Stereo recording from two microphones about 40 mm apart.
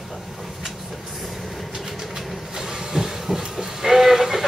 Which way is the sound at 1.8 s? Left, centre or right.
Centre.